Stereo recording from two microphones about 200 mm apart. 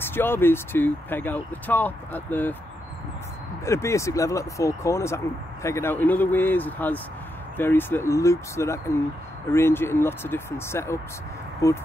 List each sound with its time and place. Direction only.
0.0 s speech: 10° left (ahead or behind)
3.6 s speech: 15° left (ahead or behind)